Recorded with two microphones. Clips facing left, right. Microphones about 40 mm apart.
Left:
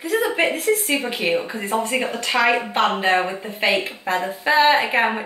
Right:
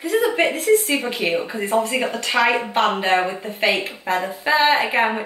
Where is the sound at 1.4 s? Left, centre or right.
Centre.